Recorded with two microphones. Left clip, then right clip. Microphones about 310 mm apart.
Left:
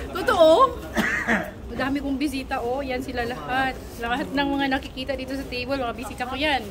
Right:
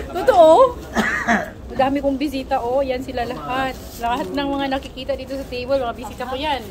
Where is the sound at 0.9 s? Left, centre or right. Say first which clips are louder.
Right 4 dB; centre.